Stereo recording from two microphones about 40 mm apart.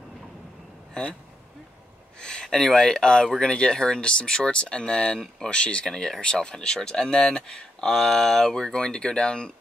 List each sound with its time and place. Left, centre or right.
2.4 s speech: centre